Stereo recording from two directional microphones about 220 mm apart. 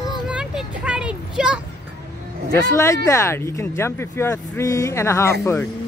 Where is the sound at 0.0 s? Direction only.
5° right (ahead or behind).